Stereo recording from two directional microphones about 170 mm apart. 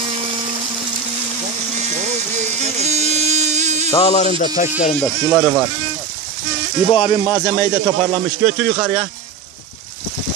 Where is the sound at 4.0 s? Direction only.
40° left (ahead or behind).